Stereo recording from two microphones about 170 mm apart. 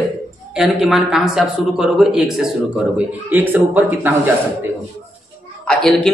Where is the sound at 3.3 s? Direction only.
10° right (ahead or behind).